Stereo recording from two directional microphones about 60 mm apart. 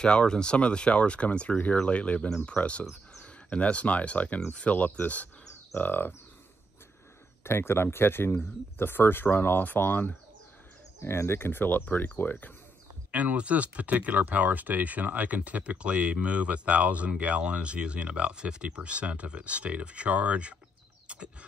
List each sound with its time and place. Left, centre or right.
0.0 s speech: centre; by 6.1 s left
7.4 s speech: left
11.0 s speech: left
13.1 s speech: right
21.1 s a sound: centre